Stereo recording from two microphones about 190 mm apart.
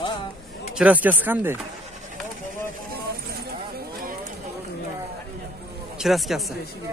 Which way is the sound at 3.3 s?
55° right (ahead or behind).